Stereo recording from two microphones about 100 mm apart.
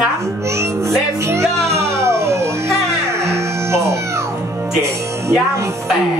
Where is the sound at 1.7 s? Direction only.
25° right (ahead or behind).